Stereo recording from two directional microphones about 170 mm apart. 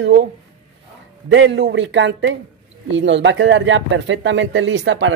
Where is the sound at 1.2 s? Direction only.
90° right.